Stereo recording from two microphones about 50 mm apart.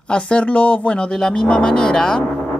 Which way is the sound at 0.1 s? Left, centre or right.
Centre.